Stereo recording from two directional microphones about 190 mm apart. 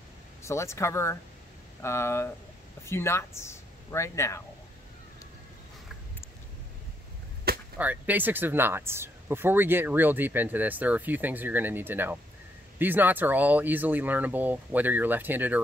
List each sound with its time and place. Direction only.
0.4 s speech: 15° left (ahead or behind)
7.7 s speech: 10° right (ahead or behind)